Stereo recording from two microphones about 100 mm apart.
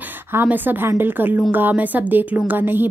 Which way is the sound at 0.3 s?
20° right (ahead or behind).